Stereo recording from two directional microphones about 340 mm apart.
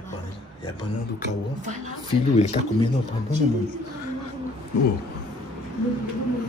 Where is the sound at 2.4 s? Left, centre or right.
Centre.